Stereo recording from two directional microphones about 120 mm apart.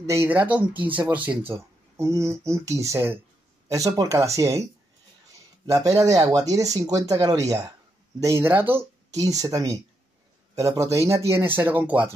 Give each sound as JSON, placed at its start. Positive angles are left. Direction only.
{"t": 0.0, "sound": "speech", "side_deg": -20}
{"t": 5.7, "sound": "speech", "side_deg": -30}
{"t": 9.2, "sound": "speech", "side_deg": -30}